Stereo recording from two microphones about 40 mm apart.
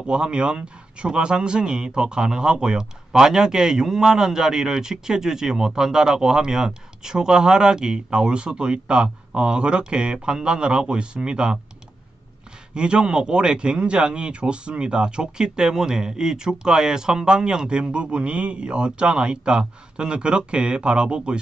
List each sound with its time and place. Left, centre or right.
0.0 s speech: right
12.7 s speech: right